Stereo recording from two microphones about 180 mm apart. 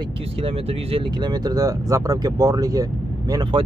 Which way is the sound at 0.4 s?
30° right (ahead or behind).